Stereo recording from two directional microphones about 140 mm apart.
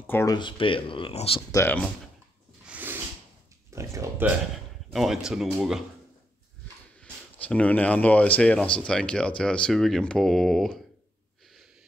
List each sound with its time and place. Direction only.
0.0 s speech: 15° left (ahead or behind)
0.3 s speech: 35° left (ahead or behind)
1.5 s speech: 20° left (ahead or behind)
2.7 s a sound: 15° right (ahead or behind)
3.7 s speech: 20° right (ahead or behind)
4.9 s speech: 5° right (ahead or behind)
7.0 s speech: 10° left (ahead or behind)